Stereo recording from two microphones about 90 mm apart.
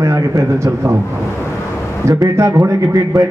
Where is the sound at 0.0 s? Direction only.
35° right (ahead or behind).